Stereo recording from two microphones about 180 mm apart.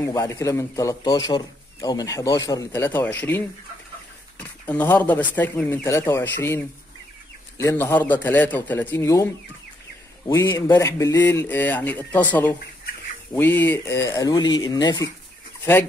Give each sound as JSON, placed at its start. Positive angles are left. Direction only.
{"t": 0.1, "sound": "a man's voice", "side_deg": 20}